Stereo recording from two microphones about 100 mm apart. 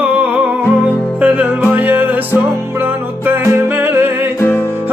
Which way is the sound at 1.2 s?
15° right (ahead or behind).